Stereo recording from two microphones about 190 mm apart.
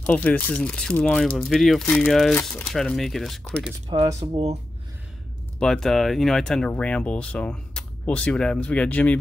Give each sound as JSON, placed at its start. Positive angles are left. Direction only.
{"t": 0.0, "sound": "speech", "side_deg": 5}
{"t": 3.9, "sound": "speech", "side_deg": -20}
{"t": 4.2, "sound": "speech", "side_deg": -35}
{"t": 5.6, "sound": "speech", "side_deg": 0}